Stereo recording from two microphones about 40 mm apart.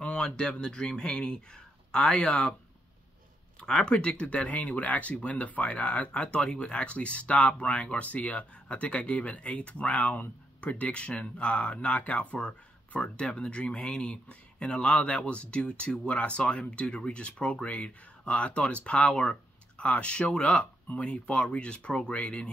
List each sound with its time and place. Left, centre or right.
0.0 s speech: left
3.6 s speech: centre